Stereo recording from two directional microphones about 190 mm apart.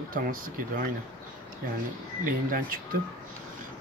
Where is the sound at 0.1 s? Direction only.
50° right (ahead or behind).